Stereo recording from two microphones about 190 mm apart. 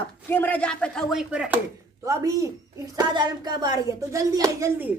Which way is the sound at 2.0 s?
15° right (ahead or behind).